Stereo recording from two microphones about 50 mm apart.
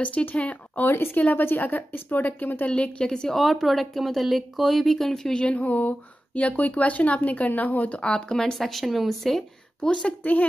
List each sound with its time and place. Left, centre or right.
0.0 s speech: left
0.8 s a woman's voice: left
2.7 s a woman's voice: centre
3.3 s speech: centre
5.3 s speech: left
8.0 s speech: centre
9.8 s a woman's voice: centre